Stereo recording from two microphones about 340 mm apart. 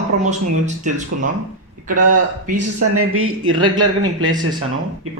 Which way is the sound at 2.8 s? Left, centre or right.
Right.